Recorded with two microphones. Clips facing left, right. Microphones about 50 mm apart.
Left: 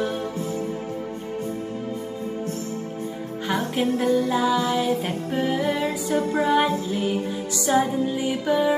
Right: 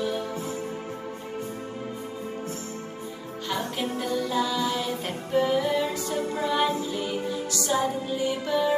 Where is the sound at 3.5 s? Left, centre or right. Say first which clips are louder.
Left 6 dB; centre.